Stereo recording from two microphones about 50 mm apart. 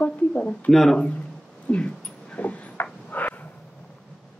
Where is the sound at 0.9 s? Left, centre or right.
Left.